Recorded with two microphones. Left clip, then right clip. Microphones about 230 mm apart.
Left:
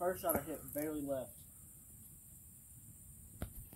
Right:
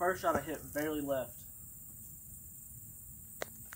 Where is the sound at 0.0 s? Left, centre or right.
Left.